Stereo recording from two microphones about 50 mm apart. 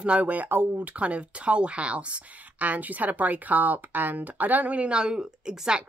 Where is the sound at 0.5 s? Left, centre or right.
Right.